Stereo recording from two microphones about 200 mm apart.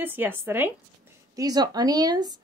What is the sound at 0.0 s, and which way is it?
A woman's voice, 10° right (ahead or behind).